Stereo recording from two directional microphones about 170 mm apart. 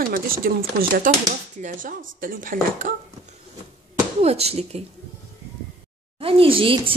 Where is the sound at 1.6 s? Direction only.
50° right (ahead or behind).